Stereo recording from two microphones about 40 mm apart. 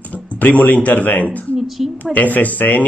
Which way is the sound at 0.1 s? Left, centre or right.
Left.